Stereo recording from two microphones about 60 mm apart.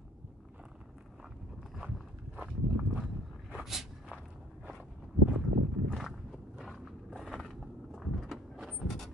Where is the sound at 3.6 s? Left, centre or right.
Centre.